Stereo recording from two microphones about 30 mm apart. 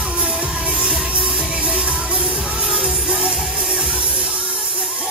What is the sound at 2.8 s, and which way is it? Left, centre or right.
Music, right.